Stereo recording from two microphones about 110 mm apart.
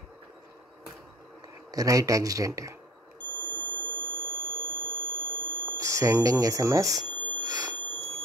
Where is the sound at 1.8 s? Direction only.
30° right (ahead or behind).